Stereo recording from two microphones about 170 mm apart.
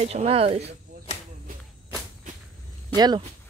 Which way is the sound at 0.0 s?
40° right (ahead or behind).